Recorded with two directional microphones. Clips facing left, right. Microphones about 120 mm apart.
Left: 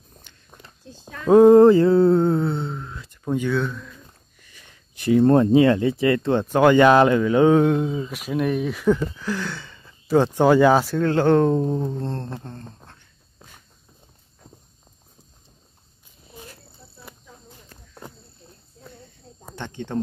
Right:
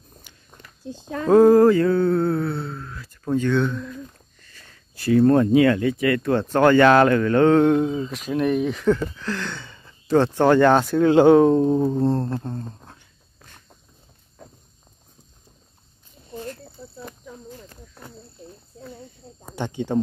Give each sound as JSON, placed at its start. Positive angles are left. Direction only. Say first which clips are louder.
{"t": 0.5, "sound": "a sound", "louder": "left 1 dB", "side_deg": 5}
{"t": 1.3, "sound": "mantra", "louder": "left 2 dB", "side_deg": 20}
{"t": 3.5, "sound": "speech", "louder": "right 3 dB", "side_deg": 0}
{"t": 4.4, "sound": "speech", "louder": "right 1 dB", "side_deg": 15}
{"t": 6.5, "sound": "speech", "louder": "even", "side_deg": 15}
{"t": 10.1, "sound": "speech", "louder": "even", "side_deg": 10}
{"t": 11.0, "sound": "speech", "louder": "right 4 dB", "side_deg": -10}
{"t": 19.5, "sound": "speech", "louder": "right 5 dB", "side_deg": -10}